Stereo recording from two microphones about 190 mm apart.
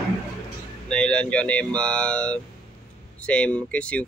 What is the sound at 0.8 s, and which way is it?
Speech, 5° left (ahead or behind).